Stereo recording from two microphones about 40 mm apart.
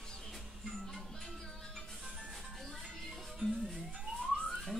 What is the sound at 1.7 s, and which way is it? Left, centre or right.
Music, centre.